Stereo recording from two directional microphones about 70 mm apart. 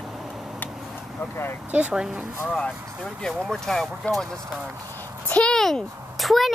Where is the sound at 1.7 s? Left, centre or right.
Centre.